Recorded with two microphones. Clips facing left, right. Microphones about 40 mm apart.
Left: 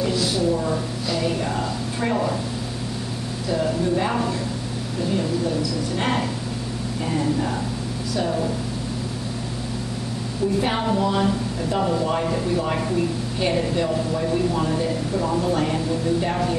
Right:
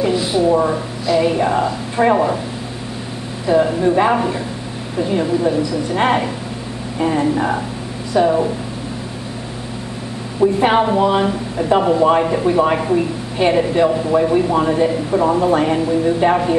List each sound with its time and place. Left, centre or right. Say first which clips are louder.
0.0 s a sound: right 6 dB; right
1.1 s speech: right 10 dB; right
3.4 s a woman's voice: right 8 dB; right
10.4 s speech: right 9 dB; right
12.3 s a woman's voice: right 8 dB; right